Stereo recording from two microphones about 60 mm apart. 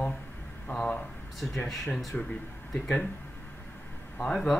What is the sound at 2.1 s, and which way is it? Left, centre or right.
Speech, left.